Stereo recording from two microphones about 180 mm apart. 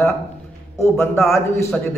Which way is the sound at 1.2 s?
Centre (ahead or behind).